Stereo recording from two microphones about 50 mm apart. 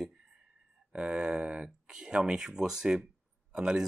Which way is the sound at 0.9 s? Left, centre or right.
Centre.